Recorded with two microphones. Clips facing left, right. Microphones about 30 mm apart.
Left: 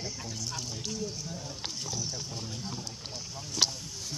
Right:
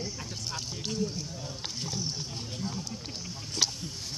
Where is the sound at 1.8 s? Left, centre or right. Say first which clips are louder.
Right 3 dB; right.